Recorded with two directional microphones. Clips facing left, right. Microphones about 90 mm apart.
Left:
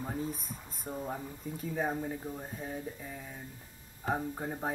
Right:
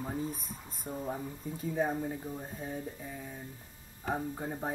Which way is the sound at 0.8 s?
Centre (ahead or behind).